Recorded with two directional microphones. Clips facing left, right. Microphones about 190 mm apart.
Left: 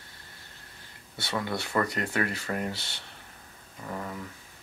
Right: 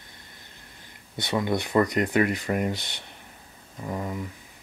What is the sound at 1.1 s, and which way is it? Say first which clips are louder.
Speech: right 6 dB; 20° right (ahead or behind).